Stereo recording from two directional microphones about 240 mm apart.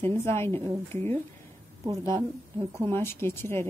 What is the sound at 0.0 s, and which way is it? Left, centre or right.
Speech, centre.